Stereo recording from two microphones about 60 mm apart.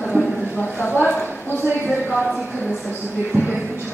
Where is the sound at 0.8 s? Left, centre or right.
Left.